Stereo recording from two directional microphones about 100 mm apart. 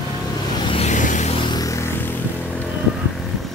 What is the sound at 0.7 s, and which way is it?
Vehicle, 80° left.